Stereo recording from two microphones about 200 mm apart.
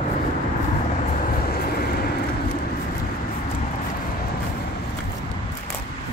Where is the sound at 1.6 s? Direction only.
50° left (ahead or behind).